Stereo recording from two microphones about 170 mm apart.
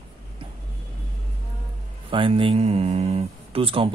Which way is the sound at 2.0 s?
30° right (ahead or behind).